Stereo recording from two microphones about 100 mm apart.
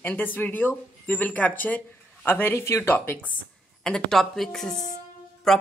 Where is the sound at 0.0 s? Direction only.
20° left (ahead or behind).